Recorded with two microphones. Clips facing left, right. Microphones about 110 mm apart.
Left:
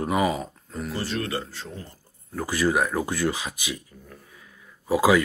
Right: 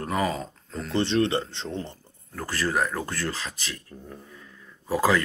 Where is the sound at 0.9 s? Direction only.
25° right (ahead or behind).